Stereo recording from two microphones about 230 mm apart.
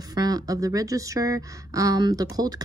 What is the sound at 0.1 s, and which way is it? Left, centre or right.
Speech, centre.